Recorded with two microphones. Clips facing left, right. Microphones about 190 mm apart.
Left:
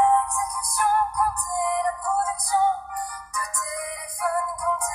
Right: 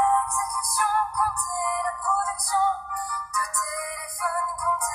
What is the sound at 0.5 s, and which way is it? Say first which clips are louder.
Music: left 4 dB; 25° left (ahead or behind).